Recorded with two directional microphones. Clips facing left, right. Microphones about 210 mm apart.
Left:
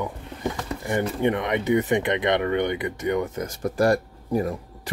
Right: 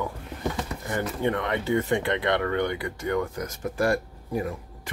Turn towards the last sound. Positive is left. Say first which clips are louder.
# left 4 dB
turn(degrees=40)  # may be behind; listen again after turning